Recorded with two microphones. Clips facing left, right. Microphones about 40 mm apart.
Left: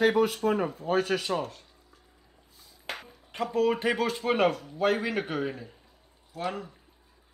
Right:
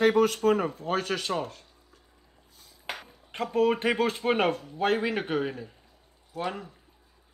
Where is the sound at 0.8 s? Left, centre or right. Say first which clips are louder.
Left 2 dB; right.